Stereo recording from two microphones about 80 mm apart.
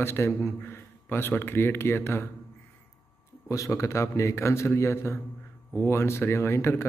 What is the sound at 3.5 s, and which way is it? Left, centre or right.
A man's voice, left.